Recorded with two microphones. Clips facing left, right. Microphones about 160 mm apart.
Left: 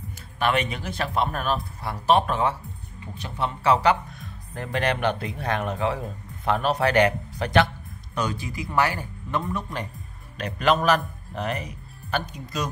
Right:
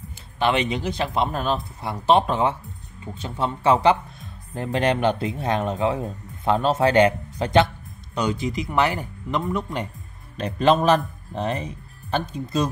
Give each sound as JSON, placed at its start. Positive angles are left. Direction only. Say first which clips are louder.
{"t": 0.4, "sound": "speech", "louder": "right 3 dB", "side_deg": -20}